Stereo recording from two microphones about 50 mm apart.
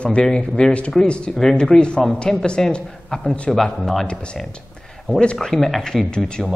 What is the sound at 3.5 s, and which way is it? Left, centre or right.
Speech, centre.